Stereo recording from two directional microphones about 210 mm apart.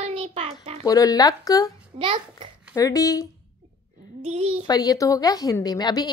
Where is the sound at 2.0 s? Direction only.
25° right (ahead or behind).